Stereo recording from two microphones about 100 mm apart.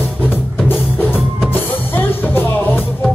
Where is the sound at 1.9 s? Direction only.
20° left (ahead or behind).